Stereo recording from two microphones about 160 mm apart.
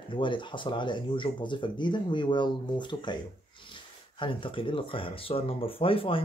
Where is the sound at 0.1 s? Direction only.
30° left (ahead or behind).